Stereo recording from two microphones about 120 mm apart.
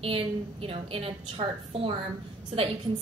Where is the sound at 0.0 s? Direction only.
50° right (ahead or behind).